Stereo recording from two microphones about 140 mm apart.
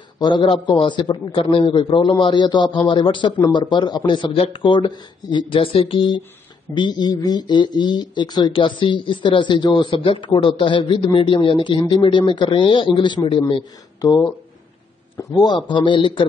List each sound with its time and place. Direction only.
0.2 s a man's voice: 35° left (ahead or behind)